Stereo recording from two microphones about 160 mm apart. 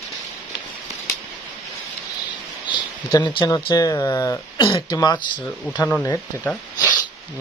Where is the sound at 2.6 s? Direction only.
30° left (ahead or behind).